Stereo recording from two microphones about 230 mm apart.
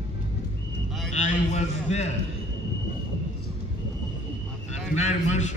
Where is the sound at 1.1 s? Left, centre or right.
Left.